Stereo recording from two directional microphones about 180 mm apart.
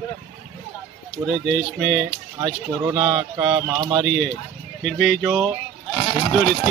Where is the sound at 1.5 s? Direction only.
Centre (ahead or behind).